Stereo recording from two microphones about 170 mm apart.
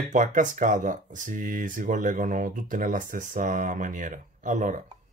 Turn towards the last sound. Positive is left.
turn(degrees=-45)  # may be behind; listen again after turning